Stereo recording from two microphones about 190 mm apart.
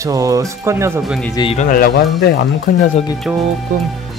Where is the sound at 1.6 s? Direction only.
50° left (ahead or behind).